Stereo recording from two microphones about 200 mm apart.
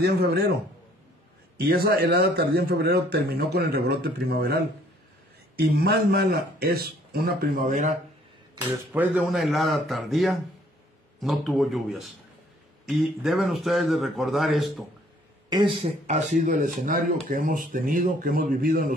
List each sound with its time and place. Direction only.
0.0 s a man's voice: 55° right (ahead or behind)
1.6 s a man's voice: 50° right (ahead or behind)
5.6 s a man's voice: 50° right (ahead or behind)
8.5 s speech: 10° right (ahead or behind)
15.5 s speech: 25° right (ahead or behind)
16.1 s a man's voice: 40° right (ahead or behind)